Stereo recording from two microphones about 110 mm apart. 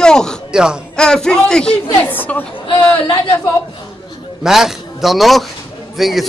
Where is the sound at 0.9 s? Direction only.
5° left (ahead or behind).